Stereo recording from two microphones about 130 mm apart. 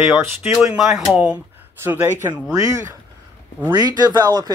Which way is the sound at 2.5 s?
25° right (ahead or behind).